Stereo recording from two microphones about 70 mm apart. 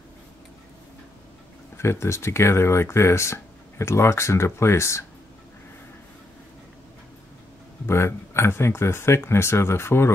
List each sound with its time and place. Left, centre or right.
1.8 s speech: left
7.8 s speech: left